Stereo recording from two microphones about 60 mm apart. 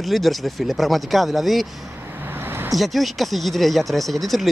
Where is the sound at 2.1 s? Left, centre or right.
Right.